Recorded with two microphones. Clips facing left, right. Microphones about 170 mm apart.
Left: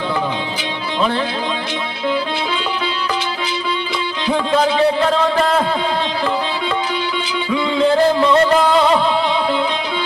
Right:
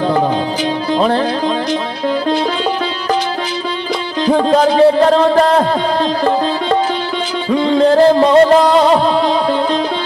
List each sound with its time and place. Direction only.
0.9 s music: 40° right (ahead or behind)
4.4 s speech: 40° right (ahead or behind)
7.4 s music: 45° right (ahead or behind)